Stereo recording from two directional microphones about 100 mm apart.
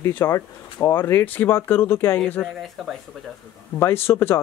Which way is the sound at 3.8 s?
25° left (ahead or behind).